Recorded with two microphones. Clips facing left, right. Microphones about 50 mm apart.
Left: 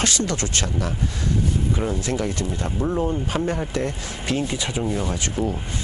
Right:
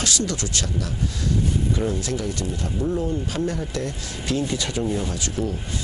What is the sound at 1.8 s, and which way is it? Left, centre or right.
Speech, left.